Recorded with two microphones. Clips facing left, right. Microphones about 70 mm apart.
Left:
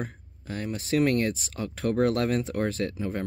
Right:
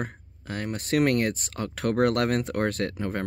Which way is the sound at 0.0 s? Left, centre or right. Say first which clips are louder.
Right 2 dB; right.